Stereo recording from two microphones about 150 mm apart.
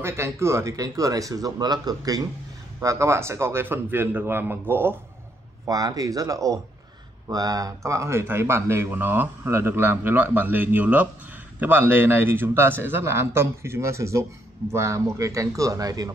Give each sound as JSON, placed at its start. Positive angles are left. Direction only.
{"t": 0.0, "sound": "speech", "side_deg": -15}